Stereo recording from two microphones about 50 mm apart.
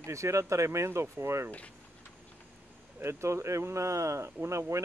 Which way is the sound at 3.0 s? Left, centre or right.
Right.